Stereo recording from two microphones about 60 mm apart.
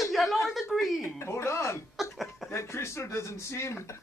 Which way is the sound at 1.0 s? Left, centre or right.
Left.